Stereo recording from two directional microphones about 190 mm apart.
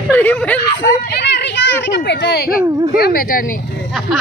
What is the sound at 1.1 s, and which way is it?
A child's voice, 60° left (ahead or behind).